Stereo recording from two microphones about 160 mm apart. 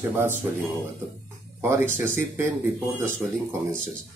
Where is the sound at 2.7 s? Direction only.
15° right (ahead or behind).